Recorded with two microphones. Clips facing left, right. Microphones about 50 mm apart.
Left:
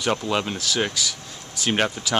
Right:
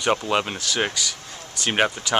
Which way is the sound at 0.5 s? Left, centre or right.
Centre.